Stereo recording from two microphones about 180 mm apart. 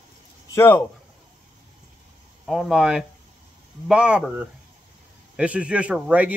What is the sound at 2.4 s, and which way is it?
A man's voice, centre (ahead or behind).